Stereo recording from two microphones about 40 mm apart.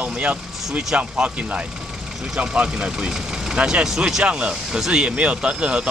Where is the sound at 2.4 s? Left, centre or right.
Right.